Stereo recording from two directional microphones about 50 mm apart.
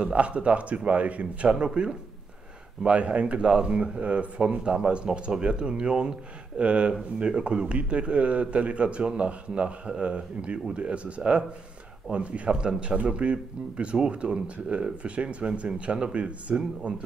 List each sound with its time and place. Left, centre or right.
0.0 s a man's voice: right